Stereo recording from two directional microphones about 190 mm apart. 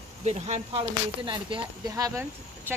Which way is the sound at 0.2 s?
35° right (ahead or behind).